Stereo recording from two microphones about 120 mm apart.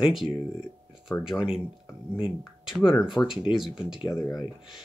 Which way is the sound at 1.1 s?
20° left (ahead or behind).